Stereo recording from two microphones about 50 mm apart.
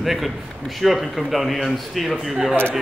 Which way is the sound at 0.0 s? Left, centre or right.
Centre.